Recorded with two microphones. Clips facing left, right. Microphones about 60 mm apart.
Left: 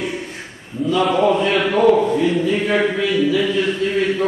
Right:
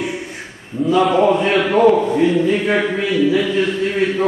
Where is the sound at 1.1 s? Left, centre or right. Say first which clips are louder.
Right 2 dB; centre.